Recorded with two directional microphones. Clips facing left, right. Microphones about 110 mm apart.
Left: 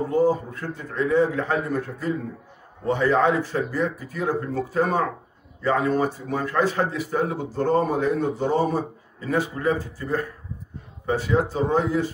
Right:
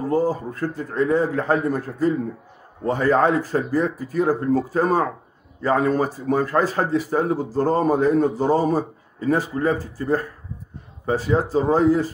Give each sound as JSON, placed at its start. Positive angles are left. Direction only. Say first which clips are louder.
{"t": 0.1, "sound": "speech", "louder": "even", "side_deg": -40}